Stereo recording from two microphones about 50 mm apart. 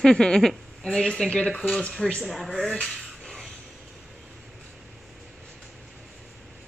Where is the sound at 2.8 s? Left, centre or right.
Centre.